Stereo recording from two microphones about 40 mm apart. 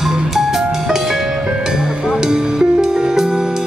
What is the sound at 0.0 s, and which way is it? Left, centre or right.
Music, centre.